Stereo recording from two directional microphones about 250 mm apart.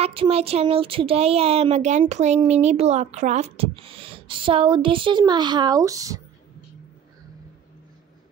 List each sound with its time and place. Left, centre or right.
0.0 s speech: right